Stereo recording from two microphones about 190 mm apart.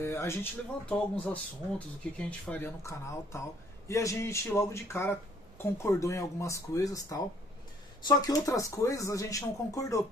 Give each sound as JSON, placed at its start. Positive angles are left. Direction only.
{"t": 0.0, "sound": "speech", "side_deg": 15}